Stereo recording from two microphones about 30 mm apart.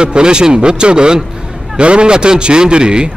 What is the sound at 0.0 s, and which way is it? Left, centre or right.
A man's voice, right.